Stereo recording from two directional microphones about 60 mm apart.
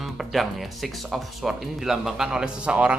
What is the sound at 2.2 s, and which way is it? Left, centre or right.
Speech, centre.